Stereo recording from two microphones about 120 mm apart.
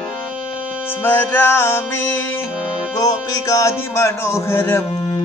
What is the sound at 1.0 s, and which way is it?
Speech, 15° left (ahead or behind).